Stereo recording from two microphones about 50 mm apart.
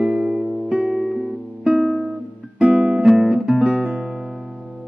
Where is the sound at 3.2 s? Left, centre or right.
Centre.